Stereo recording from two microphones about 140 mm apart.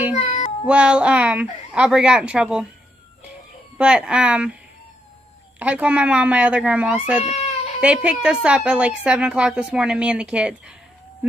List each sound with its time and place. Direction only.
0.7 s a woman's voice: 10° right (ahead or behind)
3.7 s a woman's voice: 5° right (ahead or behind)
5.6 s a woman's voice: 10° right (ahead or behind)
7.2 s cat: 50° left (ahead or behind)
7.8 s a woman's voice: 10° right (ahead or behind)